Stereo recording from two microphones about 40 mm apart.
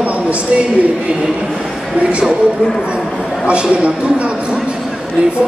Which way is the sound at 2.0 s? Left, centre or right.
Right.